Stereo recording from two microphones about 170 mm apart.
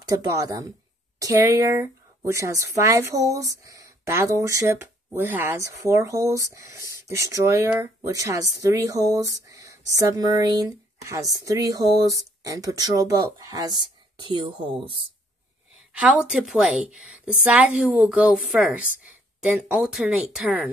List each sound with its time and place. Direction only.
0.0 s speech: 20° right (ahead or behind)
15.9 s a woman's voice: 5° right (ahead or behind)